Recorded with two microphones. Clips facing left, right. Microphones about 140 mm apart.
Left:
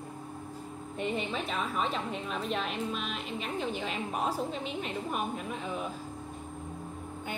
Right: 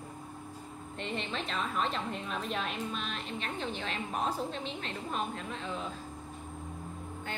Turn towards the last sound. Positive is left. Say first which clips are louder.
# left 3 dB
turn(degrees=10)  # may be behind; listen again after turning